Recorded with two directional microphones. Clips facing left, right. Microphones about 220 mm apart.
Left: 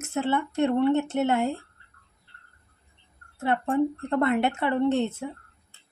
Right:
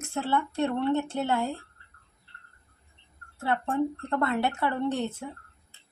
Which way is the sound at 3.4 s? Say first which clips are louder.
Left 3 dB; 20° left (ahead or behind).